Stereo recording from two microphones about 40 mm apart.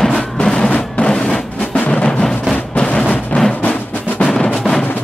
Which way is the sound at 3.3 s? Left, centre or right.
Left.